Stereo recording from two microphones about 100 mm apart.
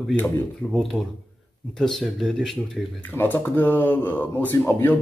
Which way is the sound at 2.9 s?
20° left (ahead or behind).